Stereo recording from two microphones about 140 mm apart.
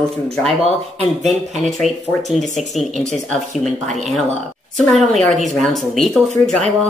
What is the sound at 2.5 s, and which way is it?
Speech, 55° left (ahead or behind).